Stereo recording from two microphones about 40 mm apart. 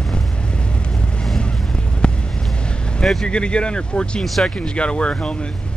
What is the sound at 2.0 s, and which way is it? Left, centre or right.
Vehicle, left.